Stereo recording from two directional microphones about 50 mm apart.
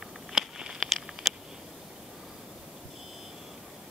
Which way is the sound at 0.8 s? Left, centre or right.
Centre.